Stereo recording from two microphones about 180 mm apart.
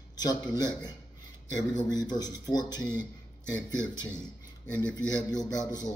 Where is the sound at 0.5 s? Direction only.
20° left (ahead or behind).